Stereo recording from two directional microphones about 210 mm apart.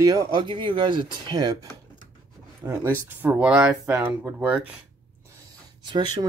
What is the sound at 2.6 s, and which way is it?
Speech, 10° right (ahead or behind).